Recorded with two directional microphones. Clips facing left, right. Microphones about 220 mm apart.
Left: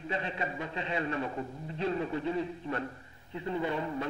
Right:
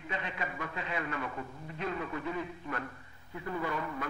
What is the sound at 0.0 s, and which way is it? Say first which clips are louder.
A man's voice: left 4 dB; 30° left (ahead or behind).